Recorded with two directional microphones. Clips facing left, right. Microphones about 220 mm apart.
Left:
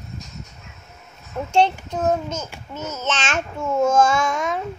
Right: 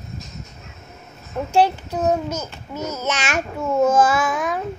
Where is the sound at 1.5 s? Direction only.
5° right (ahead or behind).